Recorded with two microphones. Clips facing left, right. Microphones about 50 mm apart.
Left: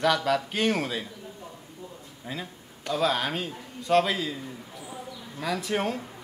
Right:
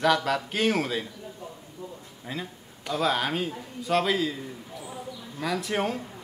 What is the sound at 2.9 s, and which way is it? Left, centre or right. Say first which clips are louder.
Speech: even; centre.